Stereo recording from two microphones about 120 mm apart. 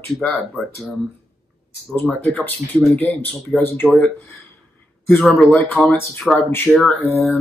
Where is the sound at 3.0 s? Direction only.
10° left (ahead or behind).